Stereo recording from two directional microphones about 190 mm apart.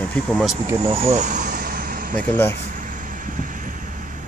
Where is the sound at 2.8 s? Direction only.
45° right (ahead or behind).